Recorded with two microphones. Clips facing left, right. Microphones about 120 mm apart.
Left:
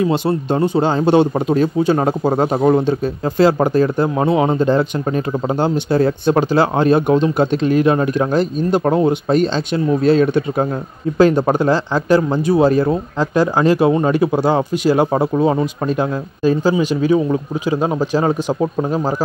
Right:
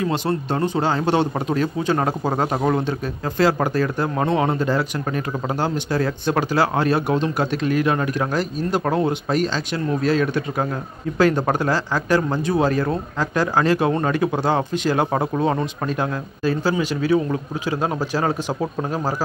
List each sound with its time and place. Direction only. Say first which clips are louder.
0.1 s speech: left 5 dB; 15° left (ahead or behind)